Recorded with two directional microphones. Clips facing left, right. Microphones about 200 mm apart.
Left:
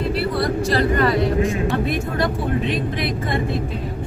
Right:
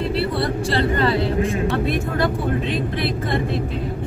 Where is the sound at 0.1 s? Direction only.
30° right (ahead or behind).